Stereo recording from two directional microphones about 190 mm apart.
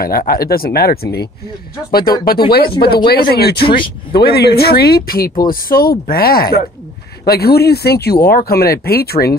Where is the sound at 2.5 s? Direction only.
55° left (ahead or behind).